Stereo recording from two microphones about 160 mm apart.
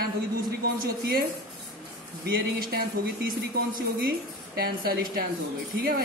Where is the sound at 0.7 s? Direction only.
65° right (ahead or behind).